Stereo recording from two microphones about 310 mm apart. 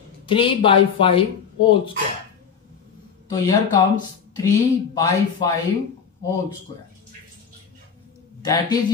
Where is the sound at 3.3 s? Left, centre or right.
Centre.